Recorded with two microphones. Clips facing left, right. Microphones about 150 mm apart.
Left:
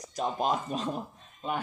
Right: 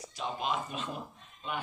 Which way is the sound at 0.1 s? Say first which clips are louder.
Left 5 dB; 40° left (ahead or behind).